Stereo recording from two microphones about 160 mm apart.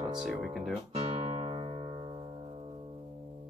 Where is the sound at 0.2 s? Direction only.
5° right (ahead or behind).